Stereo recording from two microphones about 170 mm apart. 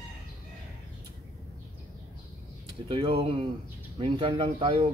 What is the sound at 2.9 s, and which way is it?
Speech, 30° right (ahead or behind).